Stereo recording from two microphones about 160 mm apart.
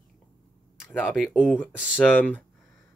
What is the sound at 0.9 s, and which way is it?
Speech, 10° left (ahead or behind).